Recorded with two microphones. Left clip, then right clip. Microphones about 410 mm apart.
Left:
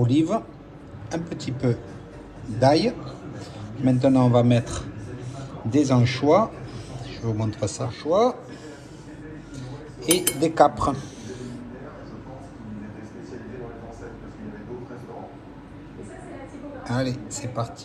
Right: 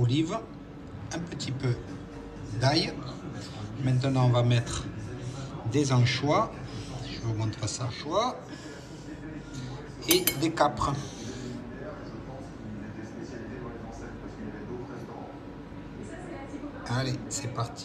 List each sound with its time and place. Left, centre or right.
0.0 s a man's voice: centre
10.0 s speech: centre